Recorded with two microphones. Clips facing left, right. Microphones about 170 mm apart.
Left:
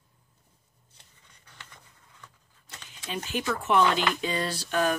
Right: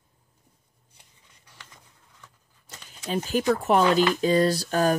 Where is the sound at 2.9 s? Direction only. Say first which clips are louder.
Right 7 dB; 45° right (ahead or behind).